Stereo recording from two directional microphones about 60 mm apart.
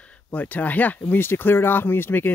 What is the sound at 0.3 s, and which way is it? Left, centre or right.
Speech, left.